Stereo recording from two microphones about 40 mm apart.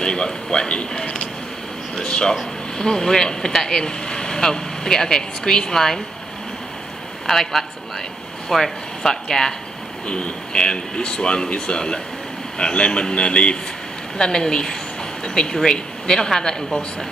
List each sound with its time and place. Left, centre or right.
0.0 s speech: left
2.0 s speech: centre
7.2 s a man's voice: centre
10.0 s speech: left; by 16.8 s centre